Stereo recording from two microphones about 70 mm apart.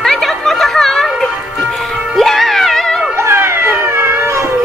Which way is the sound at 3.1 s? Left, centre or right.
Right.